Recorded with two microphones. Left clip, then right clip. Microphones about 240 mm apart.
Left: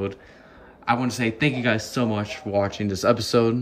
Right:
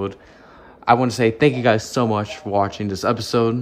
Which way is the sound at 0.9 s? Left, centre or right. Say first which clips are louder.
Right 7 dB; centre.